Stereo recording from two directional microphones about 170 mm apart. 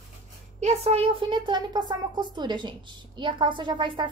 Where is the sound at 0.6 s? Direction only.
40° right (ahead or behind).